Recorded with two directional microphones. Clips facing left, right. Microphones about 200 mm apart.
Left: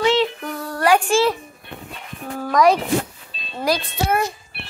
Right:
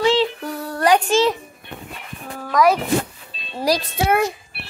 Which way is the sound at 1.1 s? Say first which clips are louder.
Even; 20° right (ahead or behind).